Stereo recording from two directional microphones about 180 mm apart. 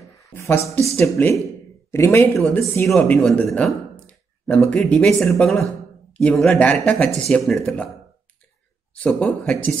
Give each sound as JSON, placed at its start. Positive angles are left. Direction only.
{"t": 0.0, "sound": "a sound", "side_deg": 15}
{"t": 0.9, "sound": "speech", "side_deg": 15}
{"t": 8.9, "sound": "speech", "side_deg": 5}